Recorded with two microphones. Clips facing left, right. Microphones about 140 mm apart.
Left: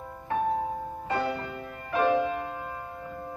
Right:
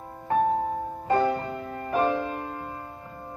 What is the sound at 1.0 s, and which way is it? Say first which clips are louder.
Music: right 7 dB; 45° right (ahead or behind).